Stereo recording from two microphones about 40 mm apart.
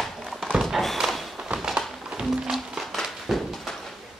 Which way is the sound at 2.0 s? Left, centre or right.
Centre.